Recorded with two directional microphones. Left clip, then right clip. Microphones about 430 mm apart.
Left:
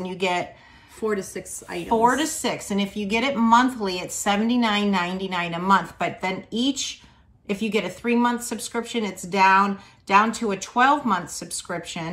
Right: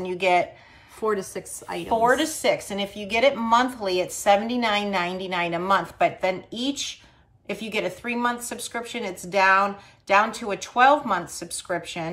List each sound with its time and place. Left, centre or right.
0.0 s a woman's voice: centre
1.9 s a woman's voice: centre